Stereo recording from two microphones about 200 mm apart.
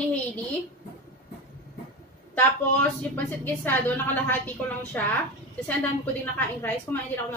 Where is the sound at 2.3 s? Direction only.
10° left (ahead or behind).